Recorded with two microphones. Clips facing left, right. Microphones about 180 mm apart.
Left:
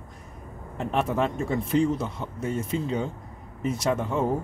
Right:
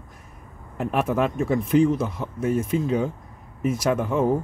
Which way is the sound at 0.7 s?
5° right (ahead or behind).